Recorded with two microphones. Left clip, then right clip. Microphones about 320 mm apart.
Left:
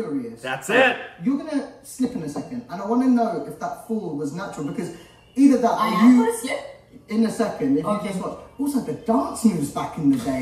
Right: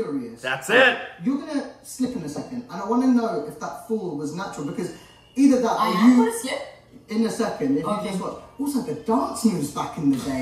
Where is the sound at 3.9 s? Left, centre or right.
Centre.